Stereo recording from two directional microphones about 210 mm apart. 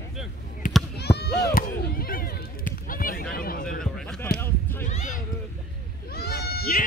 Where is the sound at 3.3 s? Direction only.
45° left (ahead or behind).